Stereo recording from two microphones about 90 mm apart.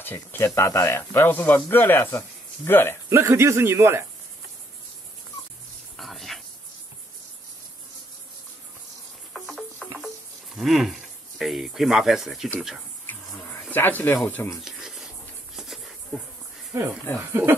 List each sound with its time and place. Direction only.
0.0 s speech: 25° left (ahead or behind)
3.1 s speech: 30° right (ahead or behind)
5.9 s a sound: 5° left (ahead or behind)
9.3 s music: centre (ahead or behind)
10.5 s speech: 5° right (ahead or behind)
13.5 s a sound: 20° left (ahead or behind)
14.2 s speech: 20° left (ahead or behind)
14.6 s a sound: 5° right (ahead or behind)
17.3 s speech: 25° right (ahead or behind)